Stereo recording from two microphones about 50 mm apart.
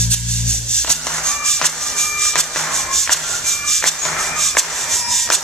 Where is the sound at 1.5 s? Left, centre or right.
Centre.